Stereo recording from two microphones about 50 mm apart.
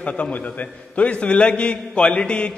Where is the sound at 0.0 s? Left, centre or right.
Left.